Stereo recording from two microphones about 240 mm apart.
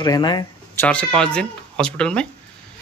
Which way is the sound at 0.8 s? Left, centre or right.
Centre.